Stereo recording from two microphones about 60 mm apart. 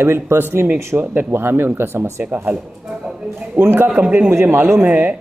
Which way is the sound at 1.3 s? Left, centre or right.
Right.